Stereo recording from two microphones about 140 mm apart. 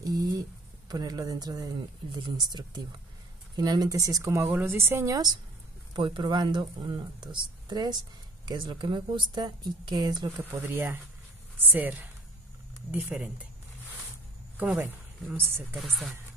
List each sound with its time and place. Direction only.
0.0 s a sound: 25° right (ahead or behind)
0.8 s speech: 25° right (ahead or behind)
10.6 s speech: 15° right (ahead or behind)
14.6 s speech: 10° right (ahead or behind)
15.7 s speech: centre (ahead or behind)